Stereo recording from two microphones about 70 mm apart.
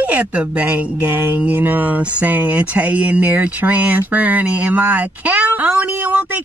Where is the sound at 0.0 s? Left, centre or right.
Right.